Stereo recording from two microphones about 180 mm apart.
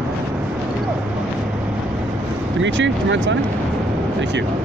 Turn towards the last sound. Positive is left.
turn(degrees=-90)